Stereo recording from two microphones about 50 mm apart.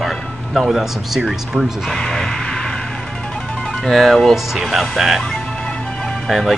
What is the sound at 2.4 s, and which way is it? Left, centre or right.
Vehicle, centre.